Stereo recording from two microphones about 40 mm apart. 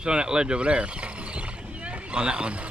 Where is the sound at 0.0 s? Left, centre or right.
Right.